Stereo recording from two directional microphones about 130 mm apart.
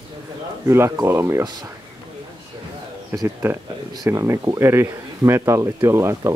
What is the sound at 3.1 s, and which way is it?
Speech, 20° right (ahead or behind).